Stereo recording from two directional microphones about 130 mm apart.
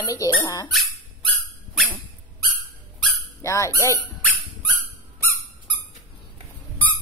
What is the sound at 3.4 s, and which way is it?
Speech, 25° left (ahead or behind).